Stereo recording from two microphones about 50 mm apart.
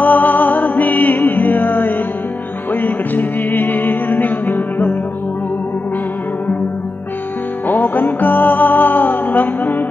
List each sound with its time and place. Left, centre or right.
0.0 s music: left
7.6 s music: left